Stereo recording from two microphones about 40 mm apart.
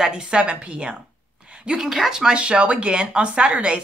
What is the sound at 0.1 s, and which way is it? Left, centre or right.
Speech, right.